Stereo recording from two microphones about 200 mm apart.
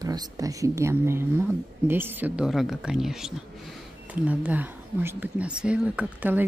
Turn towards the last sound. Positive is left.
turn(degrees=-5)  # may be behind; listen again after turning